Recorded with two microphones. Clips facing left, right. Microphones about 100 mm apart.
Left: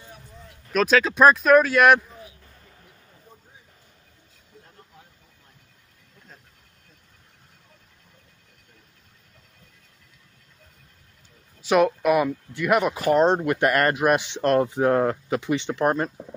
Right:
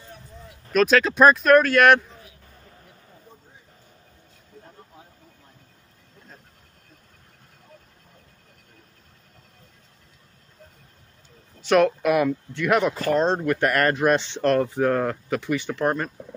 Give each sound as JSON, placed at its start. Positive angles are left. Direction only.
{"t": 0.4, "sound": "speech", "side_deg": 0}
{"t": 11.6, "sound": "speech", "side_deg": 5}